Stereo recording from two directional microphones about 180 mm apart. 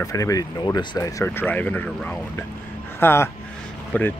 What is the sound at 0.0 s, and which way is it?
Speech, 20° left (ahead or behind).